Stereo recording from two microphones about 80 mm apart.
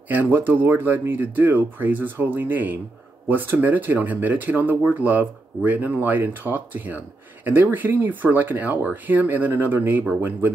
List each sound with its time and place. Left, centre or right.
0.1 s speech: right